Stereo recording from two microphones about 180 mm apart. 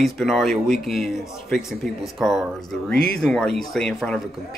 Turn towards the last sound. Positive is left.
turn(degrees=5)  # may be behind; listen again after turning